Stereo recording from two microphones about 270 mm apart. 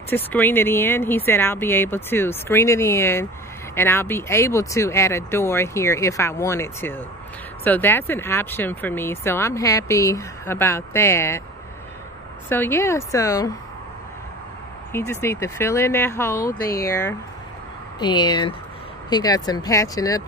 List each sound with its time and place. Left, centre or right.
0.1 s speech: centre
12.4 s speech: centre
14.9 s speech: centre